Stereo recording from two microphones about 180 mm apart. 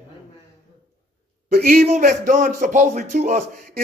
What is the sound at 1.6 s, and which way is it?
Speech, 55° right (ahead or behind).